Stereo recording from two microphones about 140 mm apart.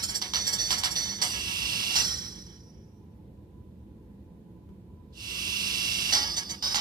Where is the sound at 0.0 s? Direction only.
30° right (ahead or behind).